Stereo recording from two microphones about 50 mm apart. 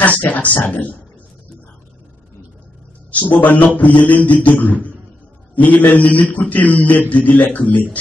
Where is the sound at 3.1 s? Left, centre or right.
Left.